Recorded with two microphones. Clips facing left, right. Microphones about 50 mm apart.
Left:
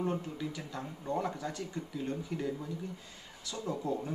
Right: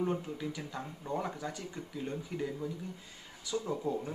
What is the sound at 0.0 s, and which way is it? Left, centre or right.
A man's voice, centre.